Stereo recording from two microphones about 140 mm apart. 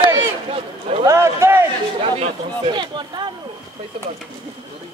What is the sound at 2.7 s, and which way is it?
Speech, 35° right (ahead or behind).